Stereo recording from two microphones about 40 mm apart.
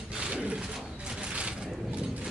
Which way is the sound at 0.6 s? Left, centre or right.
Centre.